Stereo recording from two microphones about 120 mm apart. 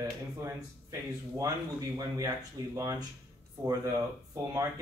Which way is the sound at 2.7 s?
25° right (ahead or behind).